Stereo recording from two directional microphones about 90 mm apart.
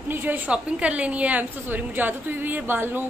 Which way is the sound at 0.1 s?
20° right (ahead or behind).